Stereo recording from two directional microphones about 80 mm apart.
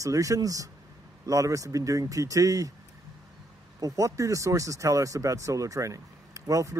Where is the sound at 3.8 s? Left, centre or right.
Right.